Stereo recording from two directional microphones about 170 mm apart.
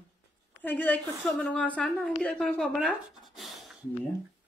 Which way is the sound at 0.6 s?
10° left (ahead or behind).